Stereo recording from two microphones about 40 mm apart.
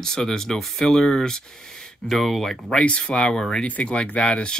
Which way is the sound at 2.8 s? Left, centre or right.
Left.